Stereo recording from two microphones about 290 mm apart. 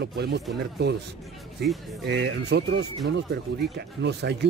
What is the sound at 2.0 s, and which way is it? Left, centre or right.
Speech, right.